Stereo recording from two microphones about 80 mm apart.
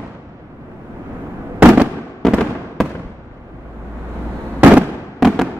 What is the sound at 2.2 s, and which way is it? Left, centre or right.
Fireworks, centre.